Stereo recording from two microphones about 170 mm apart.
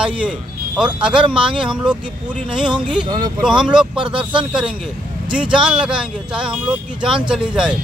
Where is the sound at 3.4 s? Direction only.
5° right (ahead or behind).